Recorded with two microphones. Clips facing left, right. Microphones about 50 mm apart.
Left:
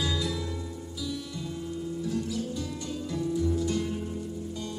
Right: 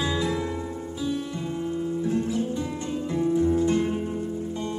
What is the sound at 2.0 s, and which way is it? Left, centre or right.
Music, right.